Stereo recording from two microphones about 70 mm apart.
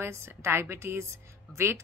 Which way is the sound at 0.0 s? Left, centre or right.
Right.